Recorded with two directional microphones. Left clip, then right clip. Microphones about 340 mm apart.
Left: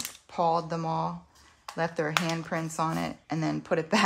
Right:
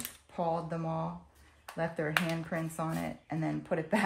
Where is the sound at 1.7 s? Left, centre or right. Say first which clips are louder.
Left 4 dB; centre.